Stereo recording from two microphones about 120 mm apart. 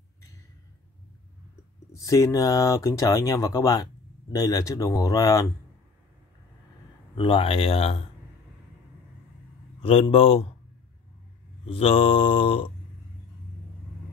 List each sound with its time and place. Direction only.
1.9 s speech: 25° left (ahead or behind)
7.2 s mantra: 45° left (ahead or behind)
9.8 s mantra: 50° left (ahead or behind)
11.6 s mantra: 50° left (ahead or behind)